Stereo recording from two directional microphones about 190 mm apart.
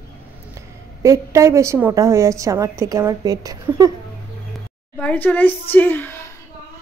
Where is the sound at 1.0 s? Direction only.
15° right (ahead or behind).